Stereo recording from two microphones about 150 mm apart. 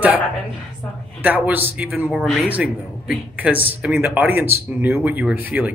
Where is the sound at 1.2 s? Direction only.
10° right (ahead or behind).